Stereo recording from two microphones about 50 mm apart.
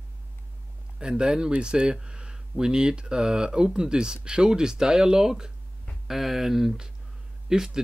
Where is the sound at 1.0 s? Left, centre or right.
Centre.